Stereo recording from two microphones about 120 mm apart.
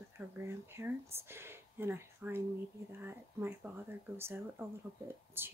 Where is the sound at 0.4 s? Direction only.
20° right (ahead or behind).